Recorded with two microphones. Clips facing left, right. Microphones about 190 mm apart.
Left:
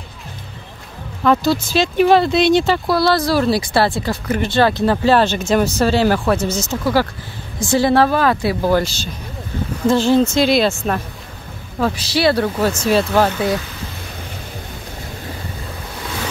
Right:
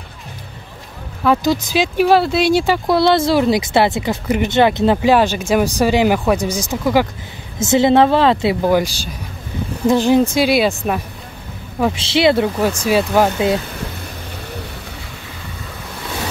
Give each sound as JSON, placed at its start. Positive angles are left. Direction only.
{"t": 1.2, "sound": "speech", "side_deg": -10}
{"t": 2.9, "sound": "speech", "side_deg": -20}
{"t": 11.8, "sound": "speech", "side_deg": -25}